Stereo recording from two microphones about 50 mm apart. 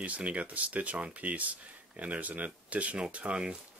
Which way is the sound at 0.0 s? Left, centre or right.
Right.